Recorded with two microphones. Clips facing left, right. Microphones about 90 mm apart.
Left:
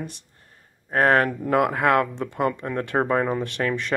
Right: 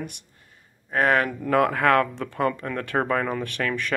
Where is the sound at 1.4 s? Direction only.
20° left (ahead or behind).